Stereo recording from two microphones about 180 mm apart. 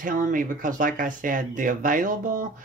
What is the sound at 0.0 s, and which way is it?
Speech, 50° right (ahead or behind).